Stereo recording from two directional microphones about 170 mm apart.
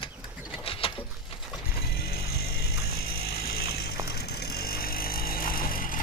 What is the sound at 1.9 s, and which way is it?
Vehicle, 65° left (ahead or behind).